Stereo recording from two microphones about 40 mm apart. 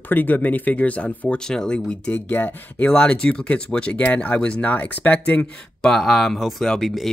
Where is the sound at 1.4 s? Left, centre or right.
Centre.